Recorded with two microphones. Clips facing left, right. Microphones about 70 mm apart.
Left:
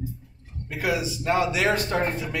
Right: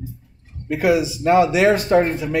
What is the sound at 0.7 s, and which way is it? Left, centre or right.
Speech, right.